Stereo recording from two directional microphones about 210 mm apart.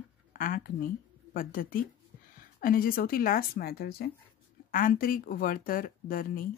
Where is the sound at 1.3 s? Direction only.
40° left (ahead or behind).